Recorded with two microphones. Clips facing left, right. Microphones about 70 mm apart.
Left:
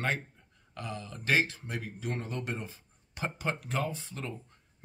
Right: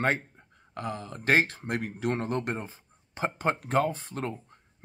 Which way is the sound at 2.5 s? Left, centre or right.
Right.